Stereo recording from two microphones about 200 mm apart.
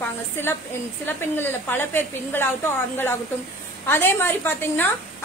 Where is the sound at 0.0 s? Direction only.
10° left (ahead or behind).